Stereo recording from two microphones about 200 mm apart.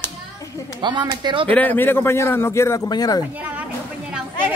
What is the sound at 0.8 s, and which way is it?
Speech, 25° right (ahead or behind).